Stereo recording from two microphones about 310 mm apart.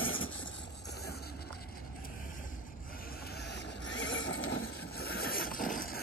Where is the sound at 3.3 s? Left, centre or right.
Left.